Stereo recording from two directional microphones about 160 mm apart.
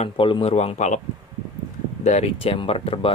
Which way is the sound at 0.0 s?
35° left (ahead or behind).